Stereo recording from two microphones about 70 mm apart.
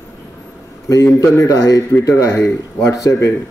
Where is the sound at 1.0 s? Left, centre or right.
Left.